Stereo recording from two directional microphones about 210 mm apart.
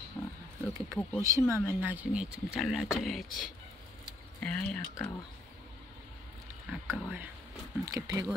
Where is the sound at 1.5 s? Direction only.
10° right (ahead or behind).